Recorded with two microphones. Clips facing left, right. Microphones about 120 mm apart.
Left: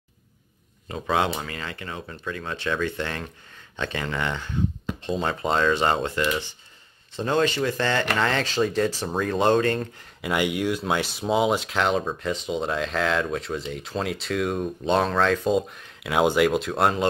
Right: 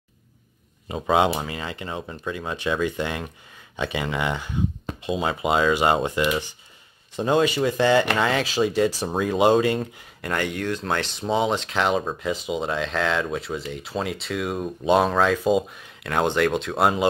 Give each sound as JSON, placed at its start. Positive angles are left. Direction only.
{"t": 0.8, "sound": "speech", "side_deg": -20}
{"t": 10.2, "sound": "speech", "side_deg": 10}